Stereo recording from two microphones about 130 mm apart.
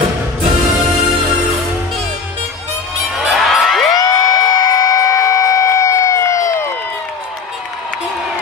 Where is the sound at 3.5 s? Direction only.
Centre (ahead or behind).